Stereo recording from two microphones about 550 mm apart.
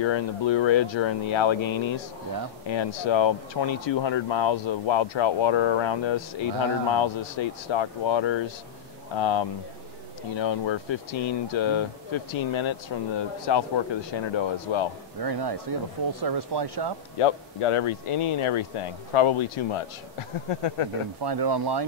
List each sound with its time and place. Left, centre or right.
0.0 s speech: left
15.2 s speech: right
17.2 s speech: left
21.2 s speech: right